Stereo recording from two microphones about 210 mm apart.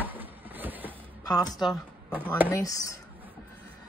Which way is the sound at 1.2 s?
15° left (ahead or behind).